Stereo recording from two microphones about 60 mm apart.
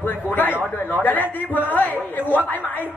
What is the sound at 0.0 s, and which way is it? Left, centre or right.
A woman's voice, left.